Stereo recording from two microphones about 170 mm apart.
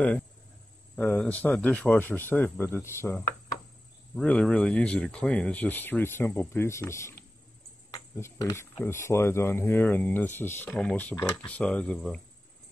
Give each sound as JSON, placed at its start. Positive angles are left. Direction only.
{"t": 0.9, "sound": "speech", "side_deg": 5}